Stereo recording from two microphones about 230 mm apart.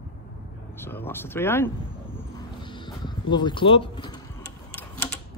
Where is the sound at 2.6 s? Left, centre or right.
Centre.